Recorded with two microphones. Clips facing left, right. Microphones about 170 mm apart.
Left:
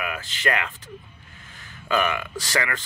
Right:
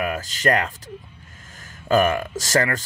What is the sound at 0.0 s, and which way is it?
Speech, 40° right (ahead or behind).